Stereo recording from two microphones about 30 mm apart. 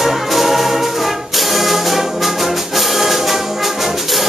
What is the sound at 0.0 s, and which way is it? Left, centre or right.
Music, centre.